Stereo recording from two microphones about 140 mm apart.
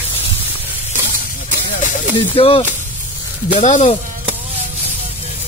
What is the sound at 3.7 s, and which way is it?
Speech, 55° left (ahead or behind).